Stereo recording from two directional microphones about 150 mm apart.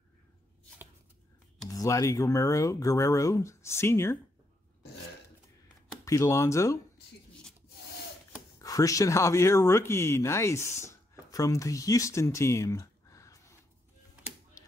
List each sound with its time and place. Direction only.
1.7 s speech: 20° left (ahead or behind)
6.0 s speech: 20° left (ahead or behind)
8.5 s speech: 20° left (ahead or behind)